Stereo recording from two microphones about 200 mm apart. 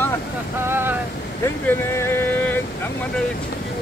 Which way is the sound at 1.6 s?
10° left (ahead or behind).